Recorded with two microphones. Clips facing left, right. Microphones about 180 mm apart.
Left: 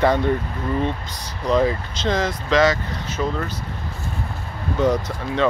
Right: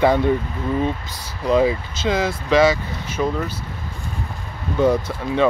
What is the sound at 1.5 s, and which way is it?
Speech, 10° right (ahead or behind).